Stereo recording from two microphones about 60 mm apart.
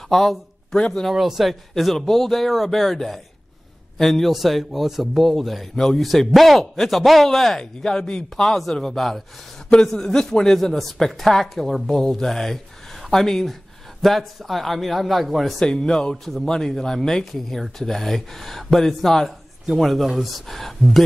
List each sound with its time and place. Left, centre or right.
0.1 s speech: centre
1.0 s a man's voice: centre
15.6 s speech: centre
16.3 s a man's voice: centre